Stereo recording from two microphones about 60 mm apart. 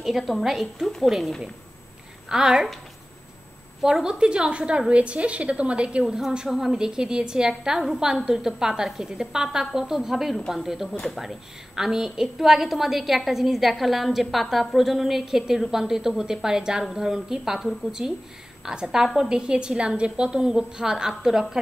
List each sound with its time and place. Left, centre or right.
0.0 s a woman's voice: centre
3.8 s a woman's voice: centre
11.0 s a woman's voice: centre
11.2 s a woman's voice: centre